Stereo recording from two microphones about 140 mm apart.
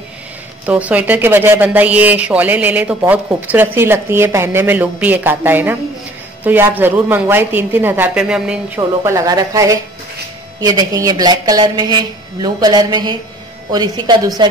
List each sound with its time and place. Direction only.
0.7 s speech: 10° right (ahead or behind)
8.7 s speech: 20° right (ahead or behind)